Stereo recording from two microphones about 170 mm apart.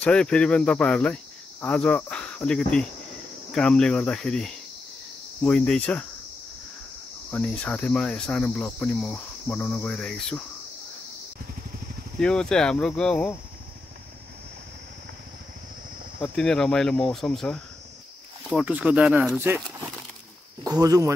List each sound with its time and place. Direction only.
0.0 s cricket: 5° left (ahead or behind)
3.5 s speech: 5° left (ahead or behind)
5.4 s cricket: 5° left (ahead or behind)
7.2 s cricket: 5° left (ahead or behind)
12.2 s speech: 5° left (ahead or behind)
16.2 s speech: 5° left (ahead or behind)
18.6 s speech: 5° right (ahead or behind)
20.6 s speech: 20° right (ahead or behind)